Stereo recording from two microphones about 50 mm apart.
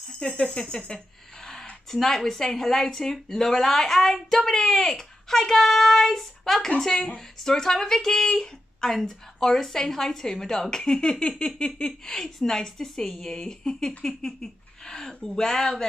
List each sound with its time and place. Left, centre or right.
0.2 s speech: centre